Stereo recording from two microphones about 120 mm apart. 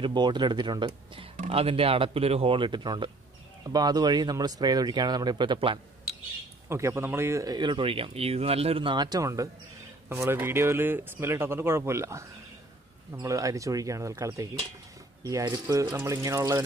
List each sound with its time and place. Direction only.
0.0 s speech: 40° right (ahead or behind)
6.7 s speech: 25° right (ahead or behind)
7.5 s speech: 40° right (ahead or behind); by 16.6 s 25° right (ahead or behind)